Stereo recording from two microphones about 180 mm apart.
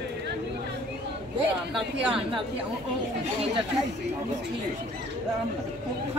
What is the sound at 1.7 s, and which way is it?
Speech, 5° right (ahead or behind).